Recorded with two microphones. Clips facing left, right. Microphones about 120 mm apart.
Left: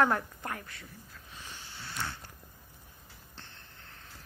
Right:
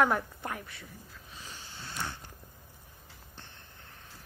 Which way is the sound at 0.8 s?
15° right (ahead or behind).